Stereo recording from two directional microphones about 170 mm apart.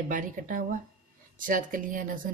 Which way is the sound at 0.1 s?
50° right (ahead or behind).